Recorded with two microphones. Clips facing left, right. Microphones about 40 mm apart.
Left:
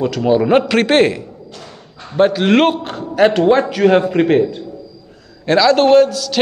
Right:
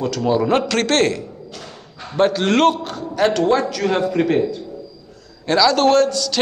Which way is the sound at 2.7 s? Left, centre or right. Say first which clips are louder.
Left 3 dB; left.